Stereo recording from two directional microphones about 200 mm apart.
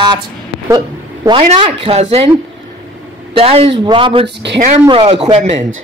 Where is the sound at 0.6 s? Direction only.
20° right (ahead or behind).